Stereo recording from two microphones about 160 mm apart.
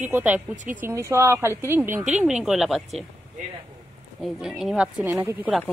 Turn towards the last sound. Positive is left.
turn(degrees=-15)  # may be behind; listen again after turning